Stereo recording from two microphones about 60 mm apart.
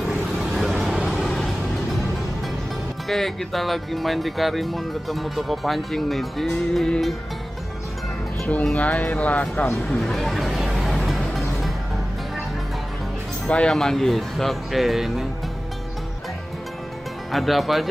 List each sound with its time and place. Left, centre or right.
0.5 s vehicle: centre
3.1 s speech: centre
8.7 s speech: left
9.8 s music: centre
13.5 s speech: centre
13.7 s speech: centre
17.3 s speech: centre